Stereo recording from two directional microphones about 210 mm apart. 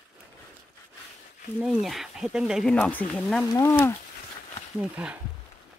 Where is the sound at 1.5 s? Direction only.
Centre (ahead or behind).